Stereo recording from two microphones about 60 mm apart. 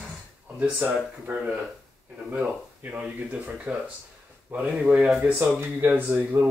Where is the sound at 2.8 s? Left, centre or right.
Right.